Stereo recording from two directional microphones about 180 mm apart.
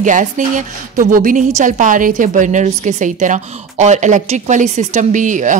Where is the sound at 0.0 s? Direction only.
45° right (ahead or behind).